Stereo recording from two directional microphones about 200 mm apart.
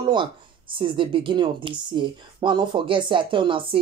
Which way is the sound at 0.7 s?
25° right (ahead or behind).